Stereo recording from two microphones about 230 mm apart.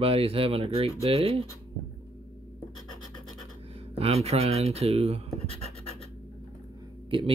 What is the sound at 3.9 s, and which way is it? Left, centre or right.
Speech, right.